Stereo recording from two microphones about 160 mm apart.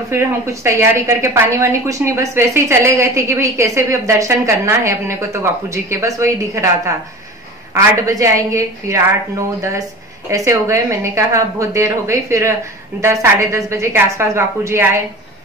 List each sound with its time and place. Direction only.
0.1 s a woman's voice: 15° right (ahead or behind)
7.7 s a woman's voice: 20° right (ahead or behind)